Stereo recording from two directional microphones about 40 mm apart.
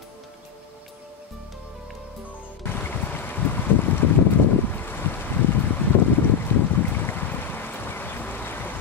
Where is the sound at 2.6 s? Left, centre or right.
Left.